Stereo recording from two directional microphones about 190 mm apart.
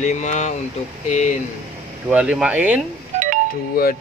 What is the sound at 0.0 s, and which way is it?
Speech, 40° left (ahead or behind).